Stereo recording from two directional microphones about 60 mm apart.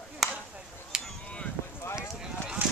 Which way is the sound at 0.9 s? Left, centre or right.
Centre.